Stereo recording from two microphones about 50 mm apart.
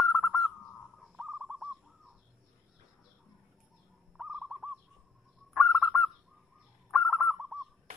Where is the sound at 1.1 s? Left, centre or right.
Centre.